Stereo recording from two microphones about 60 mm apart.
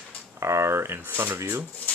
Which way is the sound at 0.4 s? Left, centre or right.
Right.